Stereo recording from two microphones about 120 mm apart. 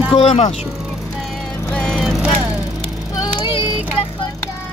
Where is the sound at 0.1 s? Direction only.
70° left (ahead or behind).